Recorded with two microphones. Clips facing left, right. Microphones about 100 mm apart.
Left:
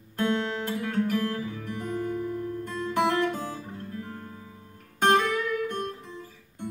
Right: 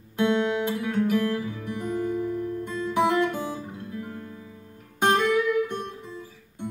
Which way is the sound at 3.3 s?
15° right (ahead or behind).